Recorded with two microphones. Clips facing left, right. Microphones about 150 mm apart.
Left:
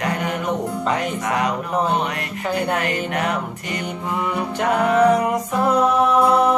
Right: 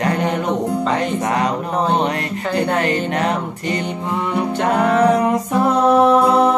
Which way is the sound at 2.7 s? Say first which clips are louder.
Right 4 dB; 30° right (ahead or behind).